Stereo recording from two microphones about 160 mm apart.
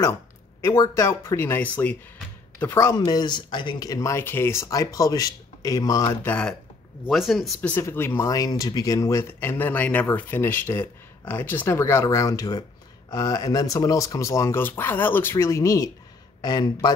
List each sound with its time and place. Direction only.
0.6 s speech: 20° left (ahead or behind); by 7.7 s centre (ahead or behind)
7.7 s speech: 15° left (ahead or behind)